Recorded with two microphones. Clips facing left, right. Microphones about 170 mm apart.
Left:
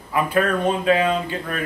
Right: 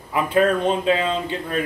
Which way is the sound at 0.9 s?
25° right (ahead or behind).